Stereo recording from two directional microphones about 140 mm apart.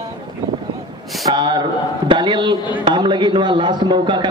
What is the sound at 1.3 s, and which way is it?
A man's voice, 30° right (ahead or behind).